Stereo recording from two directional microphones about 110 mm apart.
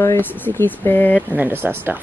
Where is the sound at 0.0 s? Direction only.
20° left (ahead or behind).